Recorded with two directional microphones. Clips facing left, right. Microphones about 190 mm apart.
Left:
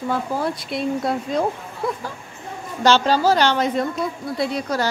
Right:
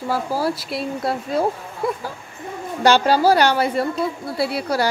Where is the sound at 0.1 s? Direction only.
5° right (ahead or behind).